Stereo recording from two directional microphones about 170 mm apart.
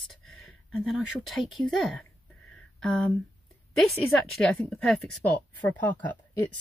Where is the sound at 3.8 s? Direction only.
Centre (ahead or behind).